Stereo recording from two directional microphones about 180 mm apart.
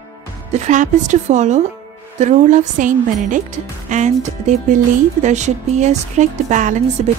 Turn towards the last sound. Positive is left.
turn(degrees=-45)  # may be behind; listen again after turning